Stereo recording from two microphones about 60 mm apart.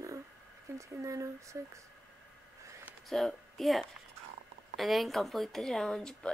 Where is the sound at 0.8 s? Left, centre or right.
Right.